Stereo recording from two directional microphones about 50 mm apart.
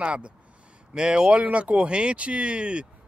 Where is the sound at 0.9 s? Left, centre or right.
Centre.